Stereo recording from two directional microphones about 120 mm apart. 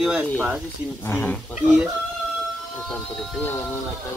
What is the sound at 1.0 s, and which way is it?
Speech, 15° left (ahead or behind).